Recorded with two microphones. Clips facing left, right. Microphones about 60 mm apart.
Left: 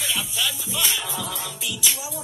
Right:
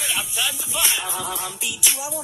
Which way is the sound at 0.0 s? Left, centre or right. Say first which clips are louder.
Right 1 dB; right.